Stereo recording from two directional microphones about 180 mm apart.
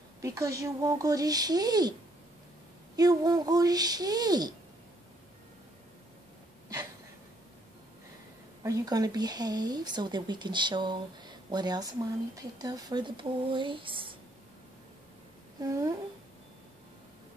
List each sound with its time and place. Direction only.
0.2 s speech: 15° right (ahead or behind)
3.0 s speech: 20° right (ahead or behind)
8.6 s speech: 20° right (ahead or behind)
15.6 s speech: 20° right (ahead or behind)